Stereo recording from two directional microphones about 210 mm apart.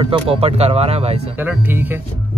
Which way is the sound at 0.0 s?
30° right (ahead or behind).